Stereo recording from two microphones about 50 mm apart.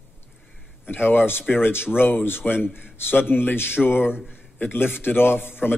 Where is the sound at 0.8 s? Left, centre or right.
Left.